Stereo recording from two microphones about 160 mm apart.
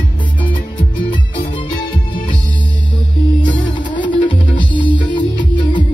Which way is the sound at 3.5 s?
30° left (ahead or behind).